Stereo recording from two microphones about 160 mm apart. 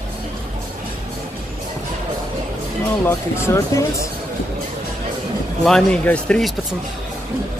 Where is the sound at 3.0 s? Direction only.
15° left (ahead or behind).